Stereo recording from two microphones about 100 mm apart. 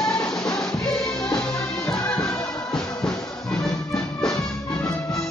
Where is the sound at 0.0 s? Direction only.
5° left (ahead or behind).